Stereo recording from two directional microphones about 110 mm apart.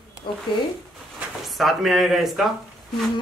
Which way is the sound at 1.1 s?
Centre (ahead or behind).